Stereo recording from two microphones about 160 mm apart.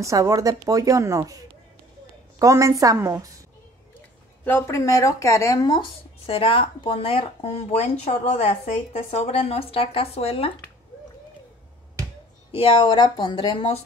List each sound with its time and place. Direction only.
0.0 s a woman's voice: 20° right (ahead or behind)
4.5 s speech: 15° left (ahead or behind); by 10.5 s 40° left (ahead or behind)
12.4 s speech: 35° left (ahead or behind)